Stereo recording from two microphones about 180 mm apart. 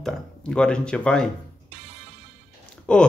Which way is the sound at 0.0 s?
5° left (ahead or behind).